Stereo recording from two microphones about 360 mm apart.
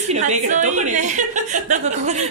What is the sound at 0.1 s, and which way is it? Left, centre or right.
A woman's voice, centre.